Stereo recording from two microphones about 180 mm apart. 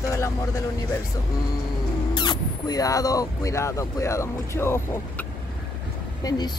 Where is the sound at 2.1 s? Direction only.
25° left (ahead or behind).